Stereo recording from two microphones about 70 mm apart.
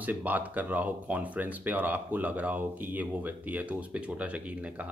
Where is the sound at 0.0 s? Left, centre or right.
Right.